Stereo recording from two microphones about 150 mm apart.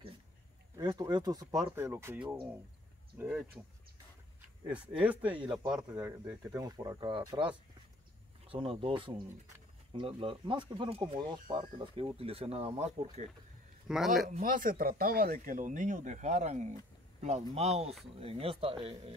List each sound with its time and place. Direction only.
0.7 s speech: 25° right (ahead or behind)
3.2 s a man's voice: 5° right (ahead or behind)
4.6 s speech: 10° right (ahead or behind)
5.3 s speech: 35° right (ahead or behind)
13.8 s a man's voice: centre (ahead or behind)
14.2 s speech: 55° right (ahead or behind); by 18.8 s 40° right (ahead or behind)